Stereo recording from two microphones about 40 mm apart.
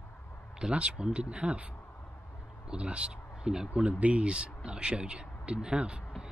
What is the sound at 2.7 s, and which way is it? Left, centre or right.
Speech, right.